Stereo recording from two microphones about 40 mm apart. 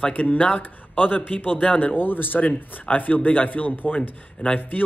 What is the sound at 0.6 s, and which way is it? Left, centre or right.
Speech, left.